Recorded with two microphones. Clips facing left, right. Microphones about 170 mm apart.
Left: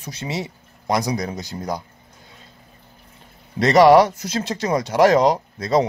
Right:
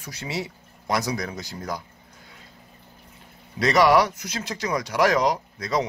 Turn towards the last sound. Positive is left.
turn(degrees=30)  # may be behind; listen again after turning